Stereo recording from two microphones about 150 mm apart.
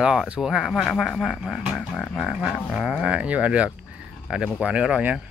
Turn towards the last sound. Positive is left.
turn(degrees=-5)  # may be behind; listen again after turning